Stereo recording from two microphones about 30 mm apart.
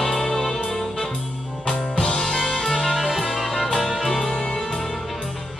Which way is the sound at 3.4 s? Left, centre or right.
Centre.